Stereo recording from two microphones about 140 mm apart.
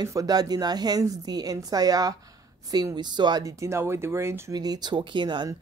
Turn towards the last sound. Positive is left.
turn(degrees=-35)  # may be behind; listen again after turning